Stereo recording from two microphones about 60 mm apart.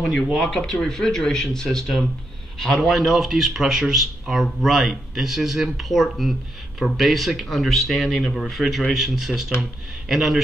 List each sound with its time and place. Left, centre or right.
0.0 s speech: centre